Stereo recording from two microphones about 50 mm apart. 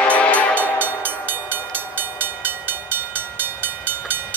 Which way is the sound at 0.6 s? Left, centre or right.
Right.